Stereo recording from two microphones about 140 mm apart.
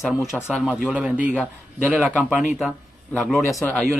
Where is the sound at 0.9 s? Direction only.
10° right (ahead or behind).